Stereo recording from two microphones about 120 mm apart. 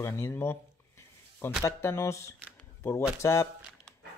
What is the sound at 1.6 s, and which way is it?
Speech, 20° left (ahead or behind).